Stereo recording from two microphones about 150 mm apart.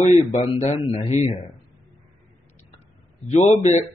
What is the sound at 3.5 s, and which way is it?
Speech, 50° left (ahead or behind).